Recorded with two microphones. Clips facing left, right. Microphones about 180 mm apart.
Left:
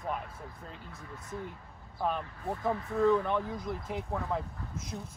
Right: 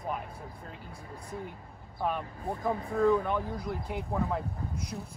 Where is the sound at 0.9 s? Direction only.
30° right (ahead or behind).